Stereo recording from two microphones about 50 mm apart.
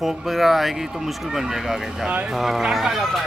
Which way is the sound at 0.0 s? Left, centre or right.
Centre.